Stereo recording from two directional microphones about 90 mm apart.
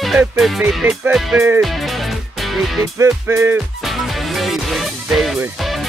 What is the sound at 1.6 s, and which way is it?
Music, centre (ahead or behind).